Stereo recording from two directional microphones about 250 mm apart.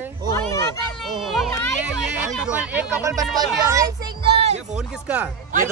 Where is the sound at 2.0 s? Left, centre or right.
Centre; by 4.6 s right.